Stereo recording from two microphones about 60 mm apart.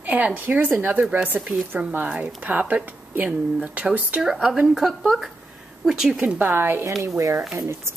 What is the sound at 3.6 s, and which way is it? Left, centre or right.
Speech, centre.